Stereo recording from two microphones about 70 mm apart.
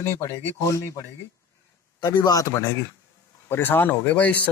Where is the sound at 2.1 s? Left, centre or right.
Left.